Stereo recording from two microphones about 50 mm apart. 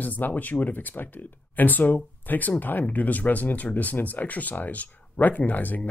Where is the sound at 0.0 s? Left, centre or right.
Left.